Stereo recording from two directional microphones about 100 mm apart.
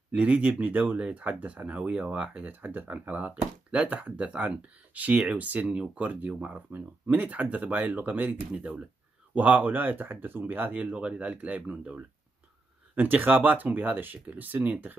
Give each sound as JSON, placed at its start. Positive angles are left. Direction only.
{"t": 0.1, "sound": "speech", "side_deg": -15}